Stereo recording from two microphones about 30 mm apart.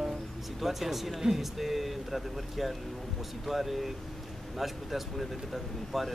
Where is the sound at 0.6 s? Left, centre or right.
Centre.